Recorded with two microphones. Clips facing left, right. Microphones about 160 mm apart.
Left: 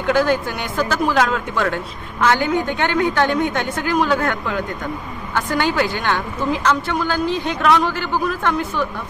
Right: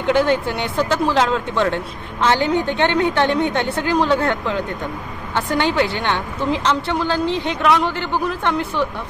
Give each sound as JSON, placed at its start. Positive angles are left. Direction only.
{"t": 0.0, "sound": "a woman's voice", "side_deg": -25}